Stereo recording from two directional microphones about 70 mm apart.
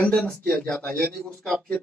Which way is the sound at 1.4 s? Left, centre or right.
Centre.